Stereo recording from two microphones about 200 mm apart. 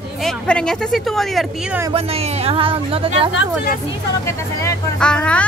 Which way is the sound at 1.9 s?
30° right (ahead or behind).